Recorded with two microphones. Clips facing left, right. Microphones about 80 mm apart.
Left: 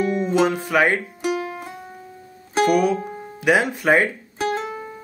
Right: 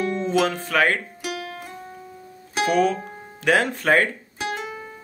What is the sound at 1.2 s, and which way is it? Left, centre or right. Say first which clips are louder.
Music: left 7 dB; left.